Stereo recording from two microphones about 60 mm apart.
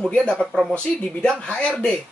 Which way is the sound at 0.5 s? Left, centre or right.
Centre.